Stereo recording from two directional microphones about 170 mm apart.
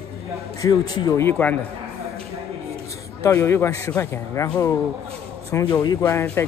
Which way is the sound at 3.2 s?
15° left (ahead or behind).